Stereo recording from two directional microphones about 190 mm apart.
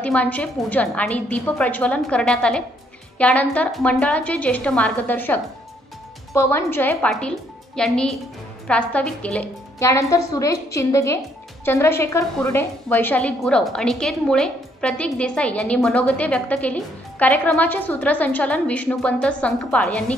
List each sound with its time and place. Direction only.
0.0 s a woman's voice: 10° left (ahead or behind)